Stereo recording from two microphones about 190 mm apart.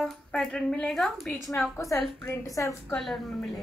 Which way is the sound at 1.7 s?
15° left (ahead or behind).